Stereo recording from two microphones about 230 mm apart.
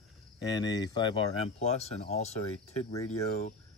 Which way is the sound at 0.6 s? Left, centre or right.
Centre.